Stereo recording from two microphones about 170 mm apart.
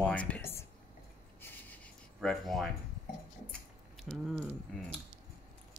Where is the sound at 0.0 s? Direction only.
10° left (ahead or behind).